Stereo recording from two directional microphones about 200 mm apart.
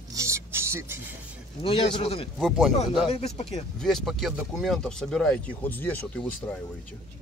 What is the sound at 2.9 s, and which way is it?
Speech, 30° left (ahead or behind).